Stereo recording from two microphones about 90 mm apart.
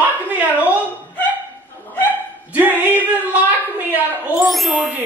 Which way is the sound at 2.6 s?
20° right (ahead or behind).